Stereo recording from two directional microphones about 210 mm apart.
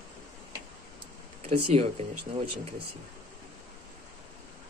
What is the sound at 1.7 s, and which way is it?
Speech, 30° right (ahead or behind).